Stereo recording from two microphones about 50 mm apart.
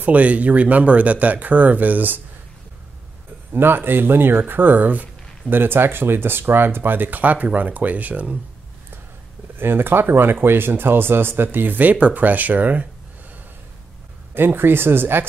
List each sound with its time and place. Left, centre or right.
0.0 s speech: right
3.5 s speech: right
5.5 s speech: right
9.6 s speech: right
14.3 s speech: right